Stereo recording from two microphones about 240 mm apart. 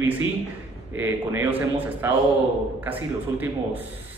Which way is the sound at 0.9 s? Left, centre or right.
Centre.